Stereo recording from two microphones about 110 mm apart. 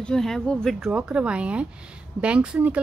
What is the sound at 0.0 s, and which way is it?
Speech, 5° left (ahead or behind).